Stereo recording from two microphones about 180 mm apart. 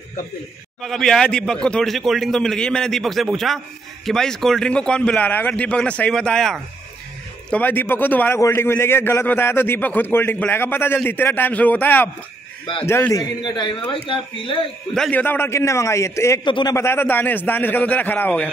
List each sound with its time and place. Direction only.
0.8 s a man's voice: 5° left (ahead or behind); by 14.6 s 30° left (ahead or behind)
15.0 s a man's voice: 5° left (ahead or behind)
16.4 s a man's voice: 25° left (ahead or behind)
16.7 s a man's voice: 15° left (ahead or behind)